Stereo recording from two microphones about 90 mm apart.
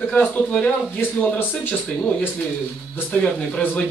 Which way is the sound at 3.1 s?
15° left (ahead or behind).